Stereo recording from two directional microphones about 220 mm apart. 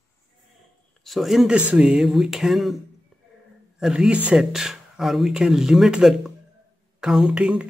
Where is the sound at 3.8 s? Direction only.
5° right (ahead or behind).